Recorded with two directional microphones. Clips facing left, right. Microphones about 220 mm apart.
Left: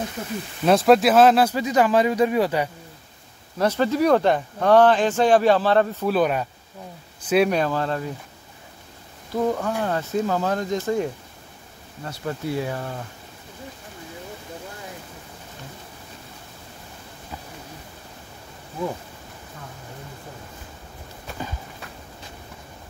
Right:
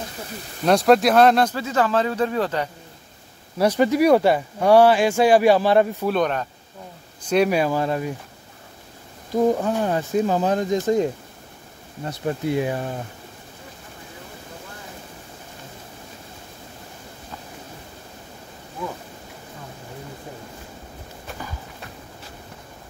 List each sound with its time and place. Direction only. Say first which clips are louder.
0.7 s speech: even; centre (ahead or behind)
1.5 s speech: left 2 dB; 15° left (ahead or behind)
3.5 s speech: right 3 dB; 15° right (ahead or behind)
6.0 s speech: left 1 dB; 5° left (ahead or behind); by 8.1 s 10° right (ahead or behind)
9.3 s speech: right 4 dB; 15° right (ahead or behind)